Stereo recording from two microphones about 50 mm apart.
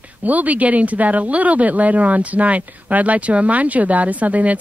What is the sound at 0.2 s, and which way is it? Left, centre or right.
Speech, right.